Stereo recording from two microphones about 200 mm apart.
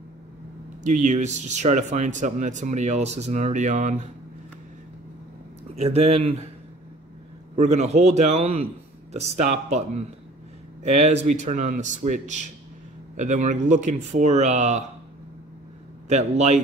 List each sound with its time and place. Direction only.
0.8 s speech: 35° right (ahead or behind)
5.9 s speech: 30° right (ahead or behind)
7.5 s speech: 35° right (ahead or behind)
16.1 s speech: 35° right (ahead or behind)